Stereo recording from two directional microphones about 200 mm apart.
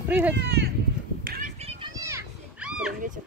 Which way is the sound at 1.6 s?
30° right (ahead or behind).